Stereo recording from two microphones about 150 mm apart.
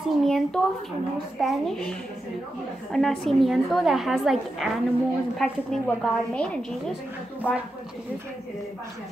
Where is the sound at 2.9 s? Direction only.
Centre (ahead or behind).